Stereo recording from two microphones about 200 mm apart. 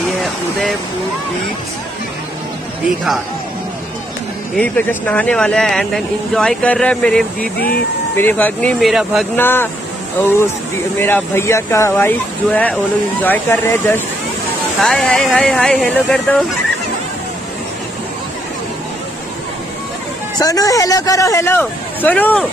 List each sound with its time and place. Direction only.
0.2 s speech: centre (ahead or behind)
4.6 s speech: 10° left (ahead or behind)
9.4 s speech: 10° left (ahead or behind)
11.0 s speech: 10° left (ahead or behind)
20.3 s speech: 20° left (ahead or behind)